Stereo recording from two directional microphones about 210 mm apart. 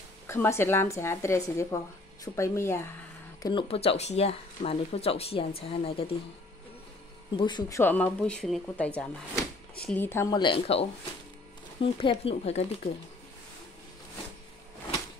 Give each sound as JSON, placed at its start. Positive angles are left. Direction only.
{"t": 0.3, "sound": "a woman's voice", "side_deg": 10}
{"t": 3.4, "sound": "speech", "side_deg": 25}
{"t": 7.3, "sound": "speech", "side_deg": 20}
{"t": 7.8, "sound": "speech", "side_deg": 5}